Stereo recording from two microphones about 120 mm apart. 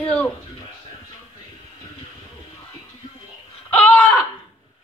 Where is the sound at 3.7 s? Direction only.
10° left (ahead or behind).